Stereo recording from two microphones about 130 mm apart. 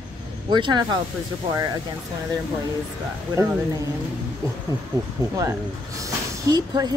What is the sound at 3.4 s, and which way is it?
Speech, 25° right (ahead or behind).